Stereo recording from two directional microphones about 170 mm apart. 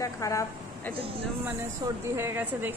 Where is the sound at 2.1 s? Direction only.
15° right (ahead or behind).